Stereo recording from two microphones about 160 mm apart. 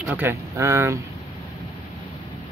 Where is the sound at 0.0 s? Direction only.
10° right (ahead or behind).